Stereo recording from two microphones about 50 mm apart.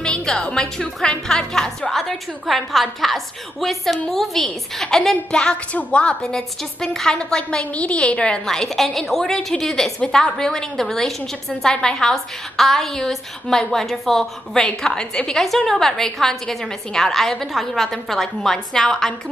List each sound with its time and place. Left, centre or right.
0.0 s a woman's voice: centre
5.3 s a woman's voice: centre
6.3 s a woman's voice: centre
8.5 s a woman's voice: centre